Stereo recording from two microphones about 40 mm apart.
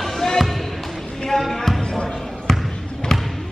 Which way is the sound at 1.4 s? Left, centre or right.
Centre.